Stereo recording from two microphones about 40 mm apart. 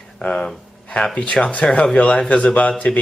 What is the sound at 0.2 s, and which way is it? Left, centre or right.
Speech, centre.